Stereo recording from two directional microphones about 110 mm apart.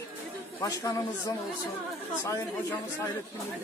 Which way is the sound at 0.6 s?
30° left (ahead or behind).